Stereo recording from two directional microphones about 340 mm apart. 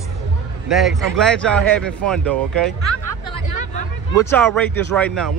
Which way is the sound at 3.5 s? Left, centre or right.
Left.